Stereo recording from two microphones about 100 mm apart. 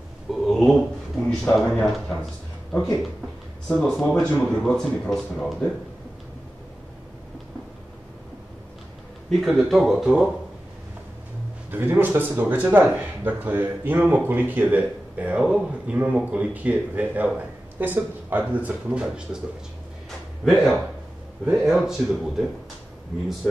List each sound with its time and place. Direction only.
0.3 s speech: centre (ahead or behind)
3.8 s speech: 5° left (ahead or behind)
9.3 s speech: centre (ahead or behind)
11.7 s a man's voice: 20° right (ahead or behind)
20.4 s speech: centre (ahead or behind)